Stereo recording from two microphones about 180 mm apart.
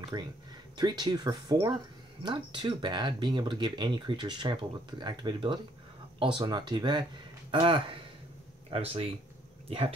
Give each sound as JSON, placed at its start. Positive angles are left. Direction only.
{"t": 0.1, "sound": "speech", "side_deg": -20}